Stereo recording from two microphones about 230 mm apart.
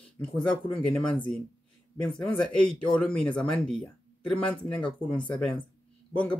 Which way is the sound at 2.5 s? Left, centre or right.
Centre.